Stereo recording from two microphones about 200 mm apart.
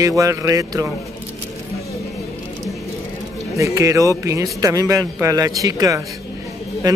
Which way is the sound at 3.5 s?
15° right (ahead or behind).